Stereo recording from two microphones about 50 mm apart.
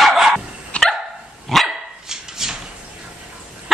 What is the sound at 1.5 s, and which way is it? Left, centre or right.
Dog, centre.